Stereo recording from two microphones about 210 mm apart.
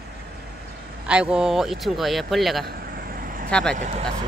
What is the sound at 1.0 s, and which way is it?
Speech, 5° right (ahead or behind).